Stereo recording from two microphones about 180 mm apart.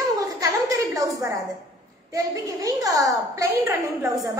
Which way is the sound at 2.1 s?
20° right (ahead or behind).